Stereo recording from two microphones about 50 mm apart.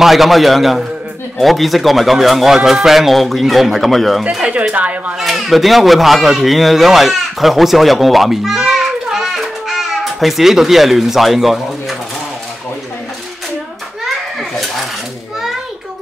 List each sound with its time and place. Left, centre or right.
0.0 s speech: centre
4.4 s speech: right
5.2 s speech: centre
9.2 s a sound: centre